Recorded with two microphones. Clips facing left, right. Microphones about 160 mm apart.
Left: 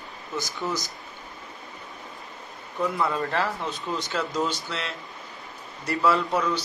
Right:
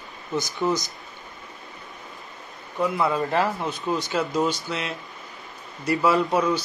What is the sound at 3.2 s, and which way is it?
Speech, 20° right (ahead or behind).